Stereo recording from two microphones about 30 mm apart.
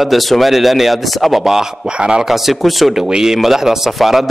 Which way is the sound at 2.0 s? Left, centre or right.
Right.